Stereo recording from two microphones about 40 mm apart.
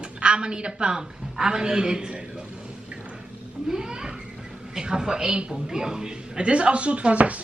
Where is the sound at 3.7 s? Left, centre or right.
Centre.